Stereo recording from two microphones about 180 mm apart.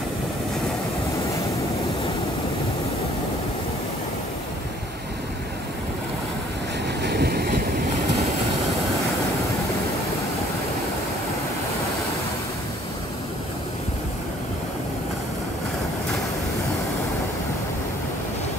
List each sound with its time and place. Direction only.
7.0 s vehicle: 65° right (ahead or behind)